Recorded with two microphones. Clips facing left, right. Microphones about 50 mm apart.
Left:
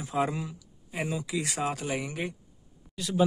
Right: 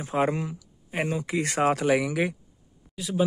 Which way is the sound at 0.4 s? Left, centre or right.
Right.